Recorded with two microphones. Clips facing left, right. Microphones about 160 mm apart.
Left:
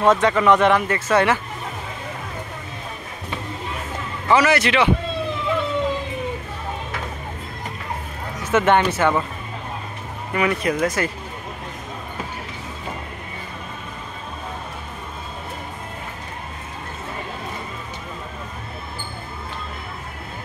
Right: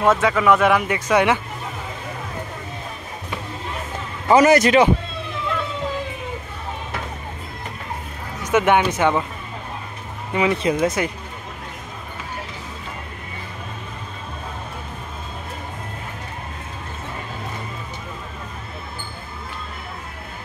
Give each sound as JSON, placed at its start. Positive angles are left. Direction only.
{"t": 0.0, "sound": "speech", "side_deg": -5}
{"t": 4.3, "sound": "a man's voice", "side_deg": -45}
{"t": 8.5, "sound": "speech", "side_deg": -10}
{"t": 10.3, "sound": "speech", "side_deg": -20}